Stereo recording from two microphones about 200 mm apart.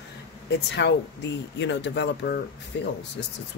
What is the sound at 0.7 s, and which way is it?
Speech, 60° left (ahead or behind).